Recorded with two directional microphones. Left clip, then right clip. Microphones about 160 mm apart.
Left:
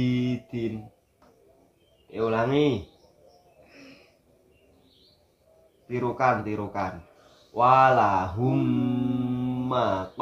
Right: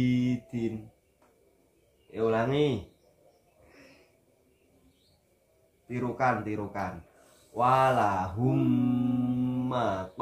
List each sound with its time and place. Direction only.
0.0 s speech: 15° left (ahead or behind)
2.0 s speech: 20° left (ahead or behind)
5.9 s speech: 20° left (ahead or behind)
7.5 s mantra: 10° left (ahead or behind)